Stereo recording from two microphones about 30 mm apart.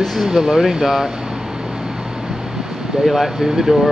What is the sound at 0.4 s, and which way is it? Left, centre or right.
Speech, centre.